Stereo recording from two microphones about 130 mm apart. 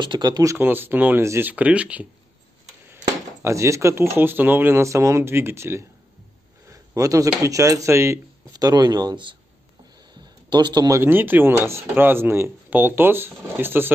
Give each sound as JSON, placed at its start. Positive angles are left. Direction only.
{"t": 0.0, "sound": "speech", "side_deg": -35}
{"t": 0.6, "sound": "speech", "side_deg": -15}
{"t": 3.4, "sound": "speech", "side_deg": -20}
{"t": 10.5, "sound": "speech", "side_deg": -35}
{"t": 11.0, "sound": "speech", "side_deg": -15}